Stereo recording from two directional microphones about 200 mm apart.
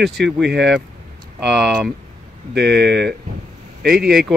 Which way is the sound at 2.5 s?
55° right (ahead or behind).